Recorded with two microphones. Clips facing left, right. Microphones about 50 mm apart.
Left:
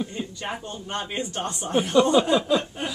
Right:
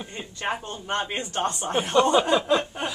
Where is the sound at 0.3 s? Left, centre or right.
Right.